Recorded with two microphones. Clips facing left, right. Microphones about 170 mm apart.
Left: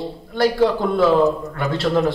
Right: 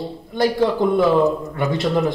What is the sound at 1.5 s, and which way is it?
Speech, 20° right (ahead or behind).